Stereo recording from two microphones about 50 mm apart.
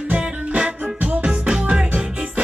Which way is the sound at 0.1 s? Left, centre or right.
Right.